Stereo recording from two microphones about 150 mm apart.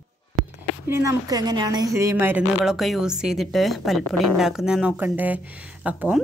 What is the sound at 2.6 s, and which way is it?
A woman's voice, centre (ahead or behind).